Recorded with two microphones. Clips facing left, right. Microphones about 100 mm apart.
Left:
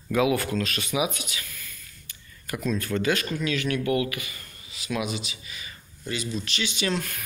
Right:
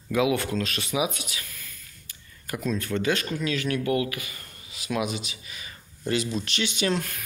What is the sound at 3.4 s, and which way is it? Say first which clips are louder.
Speech: even; 35° right (ahead or behind).